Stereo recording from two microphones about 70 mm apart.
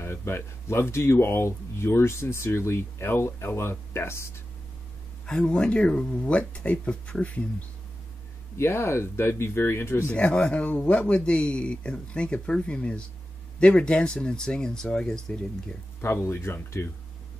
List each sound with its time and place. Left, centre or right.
0.0 s speech: left
5.2 s speech: centre
8.5 s speech: left
10.1 s speech: centre
16.0 s speech: left